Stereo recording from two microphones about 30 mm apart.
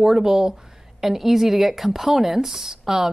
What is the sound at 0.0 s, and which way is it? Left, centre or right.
A woman's voice, centre.